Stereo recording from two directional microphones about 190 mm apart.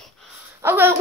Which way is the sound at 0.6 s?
10° right (ahead or behind).